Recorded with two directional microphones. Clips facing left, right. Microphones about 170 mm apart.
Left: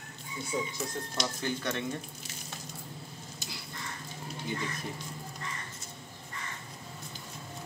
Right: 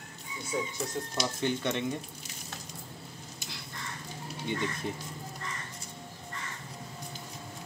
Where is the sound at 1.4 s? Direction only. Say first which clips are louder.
Right 5 dB; 20° right (ahead or behind).